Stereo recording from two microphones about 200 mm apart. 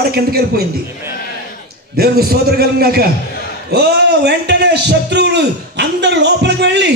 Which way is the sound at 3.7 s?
55° right (ahead or behind).